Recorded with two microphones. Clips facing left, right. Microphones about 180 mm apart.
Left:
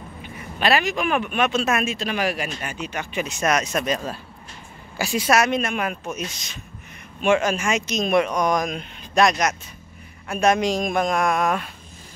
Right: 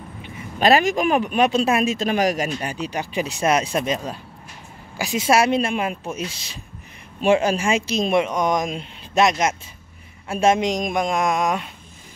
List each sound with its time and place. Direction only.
0.6 s speech: 40° right (ahead or behind)
2.0 s speech: 45° right (ahead or behind); by 11.7 s 20° right (ahead or behind)